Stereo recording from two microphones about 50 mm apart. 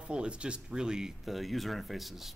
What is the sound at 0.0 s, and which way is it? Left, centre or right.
Speech, right.